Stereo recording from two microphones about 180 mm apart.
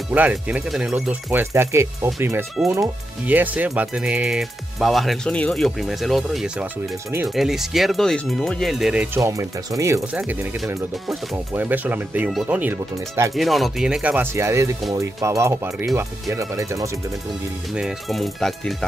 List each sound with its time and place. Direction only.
0.1 s speech: 5° right (ahead or behind)
13.3 s speech: centre (ahead or behind); by 16.9 s 20° right (ahead or behind)
17.7 s speech: centre (ahead or behind)